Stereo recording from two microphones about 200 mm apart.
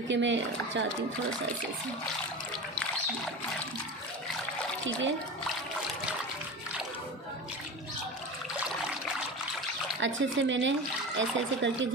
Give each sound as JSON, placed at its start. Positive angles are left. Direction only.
{"t": 0.1, "sound": "speech", "side_deg": -65}
{"t": 9.9, "sound": "speech", "side_deg": -70}